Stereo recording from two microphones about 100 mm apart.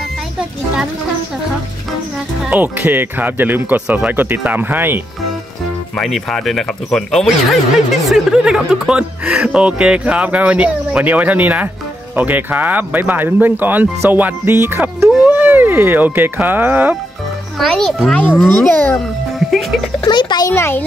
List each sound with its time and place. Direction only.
2.5 s speech: 15° right (ahead or behind)
5.9 s speech: centre (ahead or behind); by 16.9 s 20° right (ahead or behind)
17.6 s a child's voice: centre (ahead or behind); by 18.9 s 20° left (ahead or behind)
19.4 s music: centre (ahead or behind)
20.1 s a child's voice: 50° left (ahead or behind)
20.4 s a child's voice: 25° left (ahead or behind)